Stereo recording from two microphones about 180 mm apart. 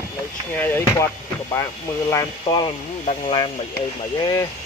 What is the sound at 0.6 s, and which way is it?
Speech, 10° left (ahead or behind).